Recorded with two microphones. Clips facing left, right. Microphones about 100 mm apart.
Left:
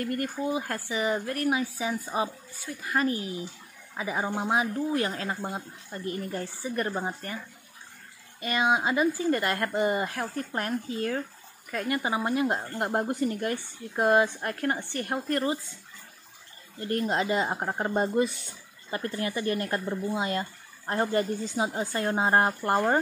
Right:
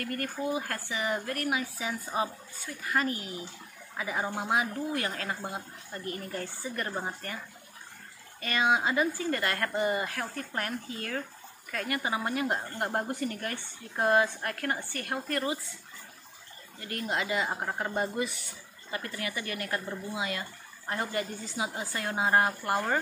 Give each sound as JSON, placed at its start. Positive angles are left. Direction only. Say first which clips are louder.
{"t": 0.0, "sound": "speech", "louder": "left 3 dB", "side_deg": 20}
{"t": 6.8, "sound": "speech", "louder": "left 4 dB", "side_deg": 15}
{"t": 8.4, "sound": "speech", "louder": "left 2 dB", "side_deg": 20}
{"t": 16.8, "sound": "speech", "louder": "left 6 dB", "side_deg": 35}